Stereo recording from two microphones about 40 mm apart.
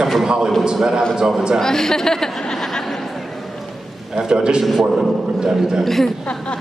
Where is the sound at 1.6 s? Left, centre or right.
Centre.